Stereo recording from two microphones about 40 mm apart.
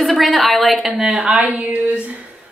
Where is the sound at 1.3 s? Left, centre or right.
Right.